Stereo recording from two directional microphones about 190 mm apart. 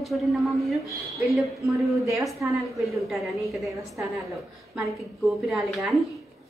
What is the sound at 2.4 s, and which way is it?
Speech, 10° right (ahead or behind).